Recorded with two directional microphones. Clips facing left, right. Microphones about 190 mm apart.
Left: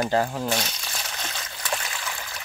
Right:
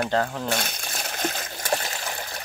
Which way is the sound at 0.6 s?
50° right (ahead or behind).